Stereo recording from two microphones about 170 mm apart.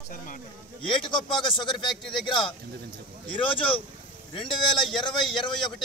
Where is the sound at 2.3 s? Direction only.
30° left (ahead or behind).